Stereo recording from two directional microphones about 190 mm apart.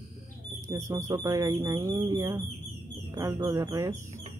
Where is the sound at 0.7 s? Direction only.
15° right (ahead or behind).